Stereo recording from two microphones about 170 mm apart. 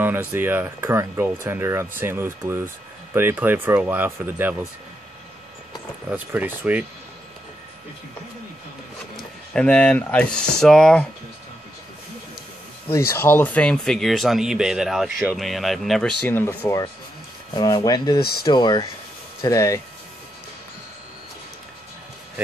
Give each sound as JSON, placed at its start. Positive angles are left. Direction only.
{"t": 0.0, "sound": "speech", "side_deg": -10}
{"t": 5.7, "sound": "speech", "side_deg": -10}
{"t": 9.1, "sound": "speech", "side_deg": 5}
{"t": 12.8, "sound": "speech", "side_deg": 15}
{"t": 17.6, "sound": "speech", "side_deg": 25}